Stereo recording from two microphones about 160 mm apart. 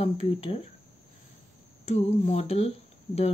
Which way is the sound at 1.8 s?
45° left (ahead or behind).